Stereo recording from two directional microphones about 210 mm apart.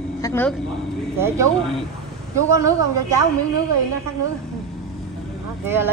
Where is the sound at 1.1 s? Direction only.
15° right (ahead or behind).